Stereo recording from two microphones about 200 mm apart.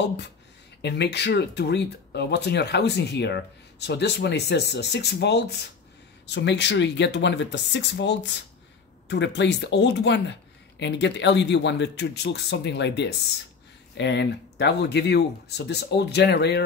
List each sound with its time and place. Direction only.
0.8 s speech: 55° left (ahead or behind)